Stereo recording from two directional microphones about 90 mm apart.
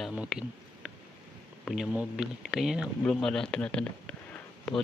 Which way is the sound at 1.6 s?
Centre (ahead or behind).